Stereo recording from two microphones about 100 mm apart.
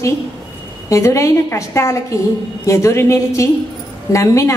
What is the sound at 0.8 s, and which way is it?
A woman's voice, 30° left (ahead or behind).